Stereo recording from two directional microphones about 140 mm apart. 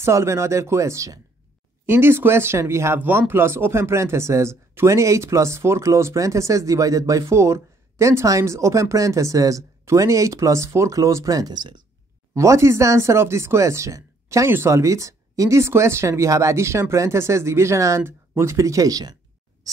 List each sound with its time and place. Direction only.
0.0 s speech: 20° right (ahead or behind)
12.4 s speech: 20° right (ahead or behind)